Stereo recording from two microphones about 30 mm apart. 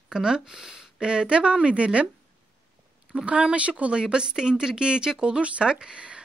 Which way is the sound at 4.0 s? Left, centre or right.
Right.